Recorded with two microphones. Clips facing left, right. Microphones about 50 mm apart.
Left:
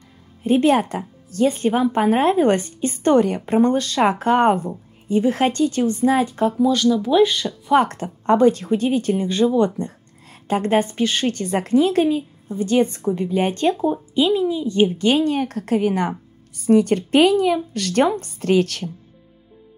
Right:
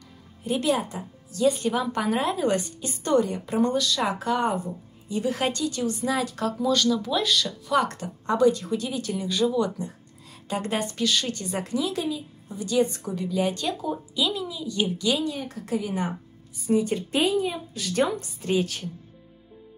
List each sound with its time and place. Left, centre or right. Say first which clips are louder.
0.4 s speech: left 8 dB; left
0.7 s speech: left 8 dB; left
3.5 s speech: left 6 dB; left
6.2 s speech: left 8 dB; left
6.7 s speech: left 5 dB; centre
7.1 s speech: left 9 dB; left
11.2 s a woman's voice: left 9 dB; left